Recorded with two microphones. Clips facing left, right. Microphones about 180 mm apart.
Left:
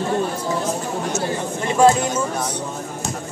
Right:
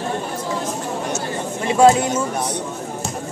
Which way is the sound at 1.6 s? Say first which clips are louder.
Right 2 dB; 10° right (ahead or behind).